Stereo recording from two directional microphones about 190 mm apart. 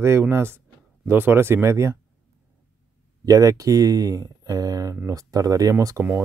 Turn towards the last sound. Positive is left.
turn(degrees=-15)  # may be behind; listen again after turning